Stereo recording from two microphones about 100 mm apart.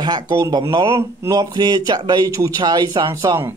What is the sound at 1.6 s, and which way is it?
Speech, 45° right (ahead or behind).